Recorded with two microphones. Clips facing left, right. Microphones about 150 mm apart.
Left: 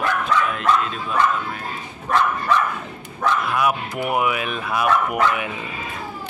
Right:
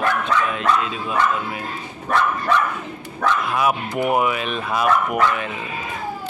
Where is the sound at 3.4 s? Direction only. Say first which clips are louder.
Right 1 dB; centre (ahead or behind).